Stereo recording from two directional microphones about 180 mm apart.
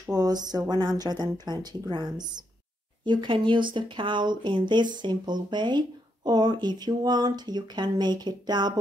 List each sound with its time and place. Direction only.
0.0 s speech: 20° right (ahead or behind)